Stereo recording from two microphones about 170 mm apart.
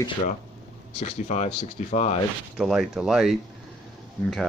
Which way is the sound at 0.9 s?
40° left (ahead or behind).